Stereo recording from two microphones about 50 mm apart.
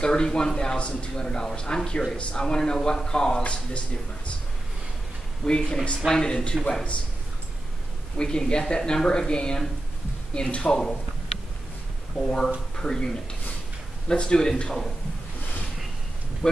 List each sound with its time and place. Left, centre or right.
0.0 s a man's voice: centre
5.4 s a man's voice: centre
8.2 s a man's voice: centre
12.2 s a man's voice: centre